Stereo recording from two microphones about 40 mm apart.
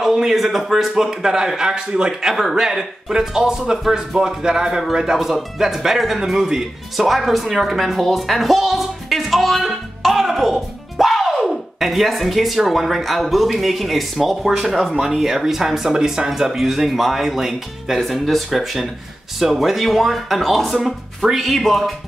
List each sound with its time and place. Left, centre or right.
0.0 s speech: centre